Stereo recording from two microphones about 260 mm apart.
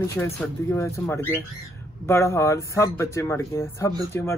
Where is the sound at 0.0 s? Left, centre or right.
Centre.